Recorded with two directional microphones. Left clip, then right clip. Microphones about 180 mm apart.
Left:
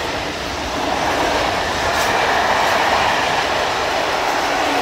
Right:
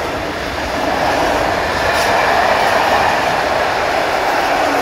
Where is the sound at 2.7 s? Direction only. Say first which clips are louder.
Right 3 dB; 50° right (ahead or behind).